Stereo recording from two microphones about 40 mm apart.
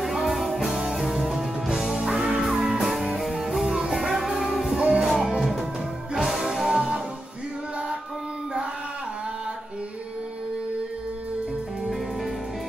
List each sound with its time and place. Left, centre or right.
0.0 s music: centre
4.7 s music: centre
5.4 s music: centre
6.3 s music: centre